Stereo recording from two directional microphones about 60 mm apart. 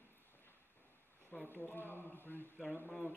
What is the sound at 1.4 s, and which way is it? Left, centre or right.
Speech, left.